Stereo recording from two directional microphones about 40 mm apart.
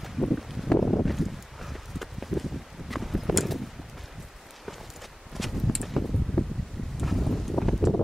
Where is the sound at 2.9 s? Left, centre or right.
Centre.